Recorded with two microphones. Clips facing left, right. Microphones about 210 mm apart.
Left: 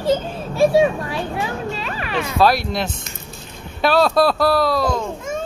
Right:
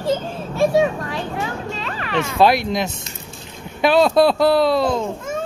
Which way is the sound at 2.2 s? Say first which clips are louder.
Right 1 dB; 20° right (ahead or behind).